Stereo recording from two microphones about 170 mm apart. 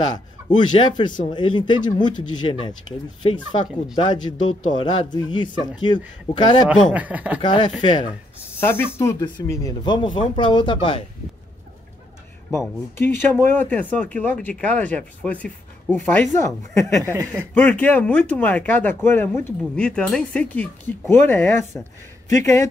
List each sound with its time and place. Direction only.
0.5 s speech: 25° left (ahead or behind)
6.7 s speech: 10° right (ahead or behind)
7.4 s speech: 25° left (ahead or behind)
8.5 s speech: 10° left (ahead or behind); by 11.1 s 30° left (ahead or behind)
12.5 s speech: 15° left (ahead or behind)
17.0 s speech: 20° right (ahead or behind)
17.6 s speech: 5° left (ahead or behind)